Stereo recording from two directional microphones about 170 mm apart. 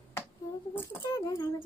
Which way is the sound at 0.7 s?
15° left (ahead or behind).